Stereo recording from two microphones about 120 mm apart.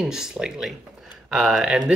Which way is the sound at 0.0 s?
5° right (ahead or behind).